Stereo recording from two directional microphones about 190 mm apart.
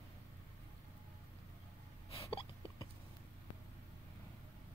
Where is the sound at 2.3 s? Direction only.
30° left (ahead or behind).